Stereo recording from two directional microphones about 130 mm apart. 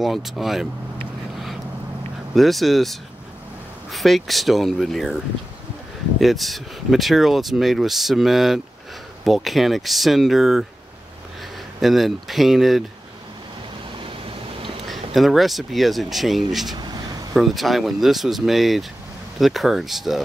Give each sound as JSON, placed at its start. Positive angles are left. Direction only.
{"t": 0.0, "sound": "speech", "side_deg": 0}
{"t": 2.3, "sound": "speech", "side_deg": 0}
{"t": 11.8, "sound": "speech", "side_deg": 0}
{"t": 14.9, "sound": "speech", "side_deg": 0}
{"t": 16.7, "sound": "a sound", "side_deg": -35}
{"t": 17.3, "sound": "speech", "side_deg": 0}